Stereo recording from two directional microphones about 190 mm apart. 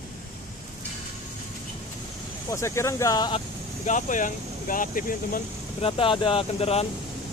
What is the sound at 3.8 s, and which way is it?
Speech, 40° left (ahead or behind).